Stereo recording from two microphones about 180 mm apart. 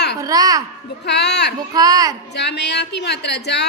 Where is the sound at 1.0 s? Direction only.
70° left (ahead or behind).